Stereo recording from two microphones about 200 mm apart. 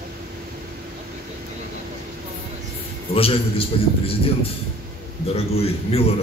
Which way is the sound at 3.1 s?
30° left (ahead or behind).